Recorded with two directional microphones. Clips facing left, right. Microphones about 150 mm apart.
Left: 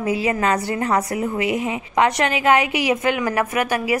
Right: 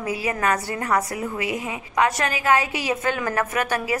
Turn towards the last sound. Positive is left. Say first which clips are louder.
# left 3 dB
turn(degrees=10)  # may be behind; listen again after turning